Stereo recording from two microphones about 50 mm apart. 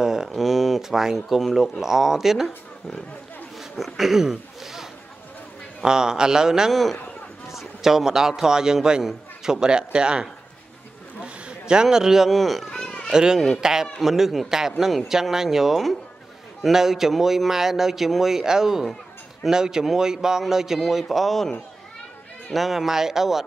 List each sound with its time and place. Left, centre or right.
0.0 s a sound: centre
0.3 s speech: centre
3.5 s speech: centre
6.7 s a man's voice: centre
12.3 s speech: centre
12.7 s a sound: centre
13.1 s speech: centre
22.5 s speech: centre